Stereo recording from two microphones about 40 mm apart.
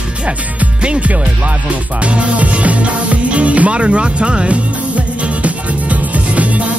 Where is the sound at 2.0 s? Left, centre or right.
Right.